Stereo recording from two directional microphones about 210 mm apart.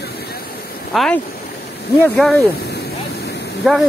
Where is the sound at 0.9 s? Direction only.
Centre (ahead or behind).